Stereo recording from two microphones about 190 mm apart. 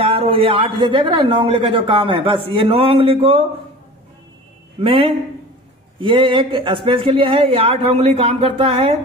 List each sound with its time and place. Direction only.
0.0 s speech: 30° right (ahead or behind)
4.8 s speech: 25° right (ahead or behind)